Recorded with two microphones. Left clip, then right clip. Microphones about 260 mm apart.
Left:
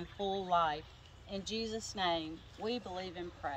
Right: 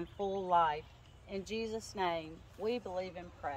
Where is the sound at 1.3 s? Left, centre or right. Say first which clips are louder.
Even; right.